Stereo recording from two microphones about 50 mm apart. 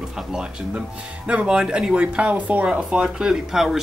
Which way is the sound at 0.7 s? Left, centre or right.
Right.